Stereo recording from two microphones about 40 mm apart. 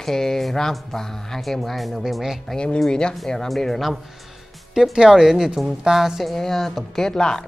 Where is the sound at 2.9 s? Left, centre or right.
Left; by 4.0 s centre.